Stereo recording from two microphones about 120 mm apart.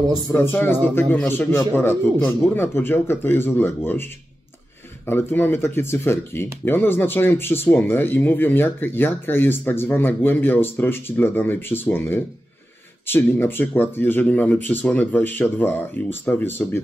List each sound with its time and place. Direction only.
0.3 s speech: 20° left (ahead or behind)